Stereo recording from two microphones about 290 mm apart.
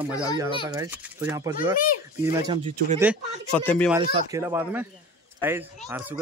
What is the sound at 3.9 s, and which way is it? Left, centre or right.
Speech, centre.